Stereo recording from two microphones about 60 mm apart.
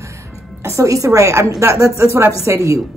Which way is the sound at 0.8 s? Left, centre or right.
Right.